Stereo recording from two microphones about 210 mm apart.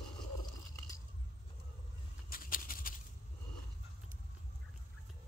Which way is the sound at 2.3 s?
40° left (ahead or behind).